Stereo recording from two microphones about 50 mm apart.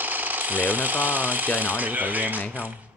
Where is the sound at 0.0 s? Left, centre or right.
Right.